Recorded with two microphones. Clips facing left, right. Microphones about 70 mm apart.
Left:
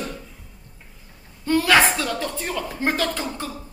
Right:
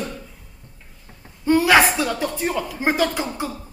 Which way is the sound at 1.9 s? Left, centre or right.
Centre.